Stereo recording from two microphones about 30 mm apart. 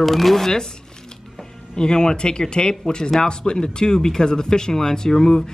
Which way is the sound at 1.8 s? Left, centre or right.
Left.